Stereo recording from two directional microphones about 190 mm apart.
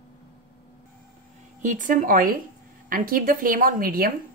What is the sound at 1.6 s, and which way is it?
Speech, 45° right (ahead or behind).